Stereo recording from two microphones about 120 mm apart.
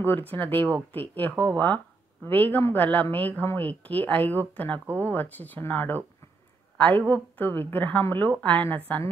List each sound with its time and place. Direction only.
0.3 s a woman's voice: 15° left (ahead or behind)